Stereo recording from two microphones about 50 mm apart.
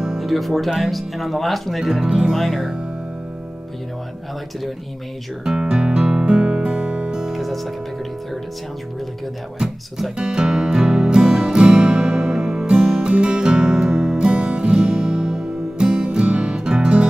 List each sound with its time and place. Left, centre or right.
0.0 s speech: centre
2.3 s speech: centre
5.4 s music: centre
7.3 s music: centre
9.6 s speech: centre
10.1 s music: centre